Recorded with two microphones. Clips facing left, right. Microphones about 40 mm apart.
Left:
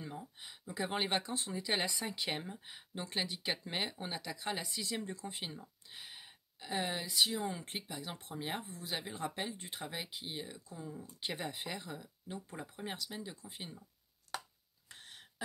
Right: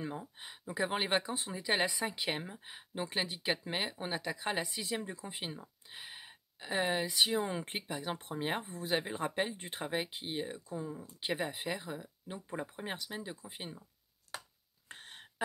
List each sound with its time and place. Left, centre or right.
0.0 s speech: right
0.7 s speech: centre
4.1 s speech: right
4.9 s speech: centre
11.0 s speech: centre
14.9 s a sound: right